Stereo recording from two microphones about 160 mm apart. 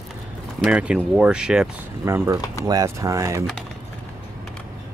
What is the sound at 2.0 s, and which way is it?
Speech, 20° right (ahead or behind).